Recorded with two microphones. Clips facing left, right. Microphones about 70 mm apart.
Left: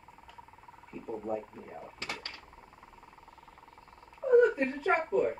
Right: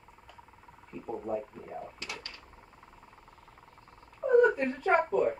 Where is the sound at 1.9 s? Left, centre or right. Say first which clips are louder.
Left 2 dB; left.